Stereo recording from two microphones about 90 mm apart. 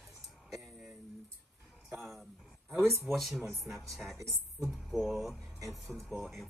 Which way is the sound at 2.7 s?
30° right (ahead or behind).